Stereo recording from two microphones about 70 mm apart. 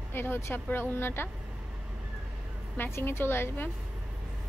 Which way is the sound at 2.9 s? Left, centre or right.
Left.